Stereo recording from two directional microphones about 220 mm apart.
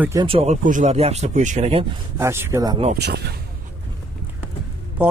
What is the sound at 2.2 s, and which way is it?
Speech, 10° right (ahead or behind).